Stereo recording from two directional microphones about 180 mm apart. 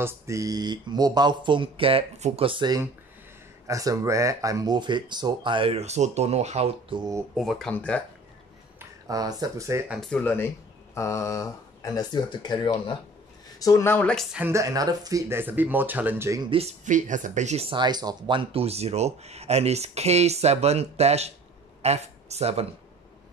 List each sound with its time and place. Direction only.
0.0 s speech: 20° right (ahead or behind); by 7.0 s 35° right (ahead or behind)
7.3 s speech: centre (ahead or behind)
8.7 s speech: 20° right (ahead or behind)
9.9 s speech: 5° left (ahead or behind)
14.3 s speech: 15° right (ahead or behind)
16.4 s speech: 35° right (ahead or behind)